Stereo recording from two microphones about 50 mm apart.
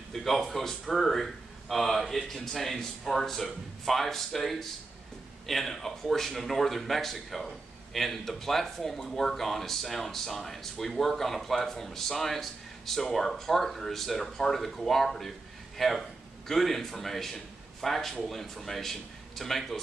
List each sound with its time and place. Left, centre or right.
0.1 s speech: centre